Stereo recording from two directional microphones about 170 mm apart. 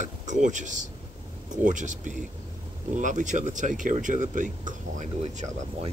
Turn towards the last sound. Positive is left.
turn(degrees=-40)  # may be behind; listen again after turning